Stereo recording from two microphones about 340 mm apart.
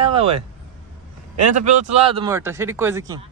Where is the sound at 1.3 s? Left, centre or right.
Right.